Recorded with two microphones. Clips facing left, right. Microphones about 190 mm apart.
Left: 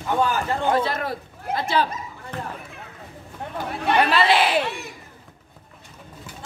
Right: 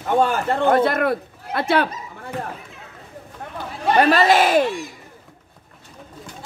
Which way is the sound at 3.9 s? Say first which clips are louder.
Right 4 dB; 40° right (ahead or behind).